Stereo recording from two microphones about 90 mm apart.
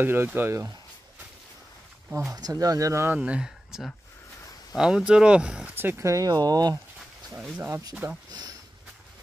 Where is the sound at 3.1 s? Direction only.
10° right (ahead or behind).